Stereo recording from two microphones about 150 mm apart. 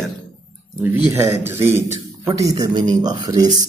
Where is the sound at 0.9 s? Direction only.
15° right (ahead or behind).